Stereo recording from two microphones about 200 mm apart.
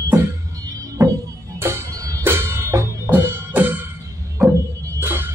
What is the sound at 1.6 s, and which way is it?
Music, 15° right (ahead or behind).